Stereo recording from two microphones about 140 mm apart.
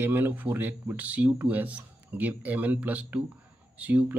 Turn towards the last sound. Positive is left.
turn(degrees=-10)  # may be behind; listen again after turning